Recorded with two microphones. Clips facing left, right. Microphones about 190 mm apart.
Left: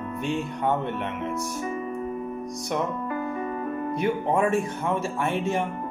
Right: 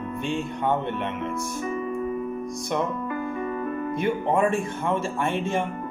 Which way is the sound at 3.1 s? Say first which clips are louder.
Even; 45° left (ahead or behind).